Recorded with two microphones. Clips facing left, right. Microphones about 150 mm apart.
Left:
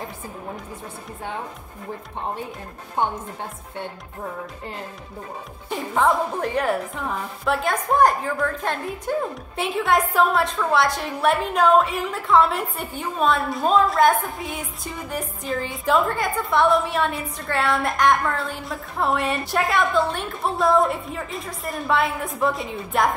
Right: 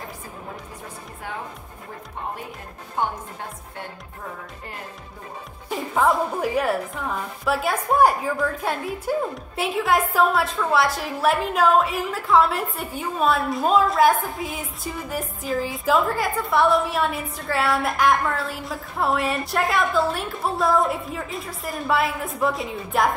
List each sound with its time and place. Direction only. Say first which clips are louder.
3.0 s speech: left 2 dB; 25° left (ahead or behind)
5.7 s a woman's voice: even; centre (ahead or behind)